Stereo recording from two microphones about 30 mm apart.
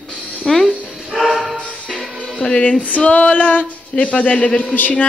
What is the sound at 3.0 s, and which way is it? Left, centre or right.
Music, left.